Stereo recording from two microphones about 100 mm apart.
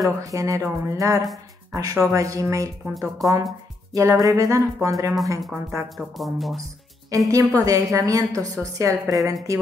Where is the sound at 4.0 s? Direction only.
35° right (ahead or behind).